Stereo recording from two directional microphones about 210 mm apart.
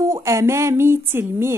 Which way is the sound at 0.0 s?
15° right (ahead or behind).